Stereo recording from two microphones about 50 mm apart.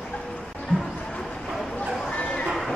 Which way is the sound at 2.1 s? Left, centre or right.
Left.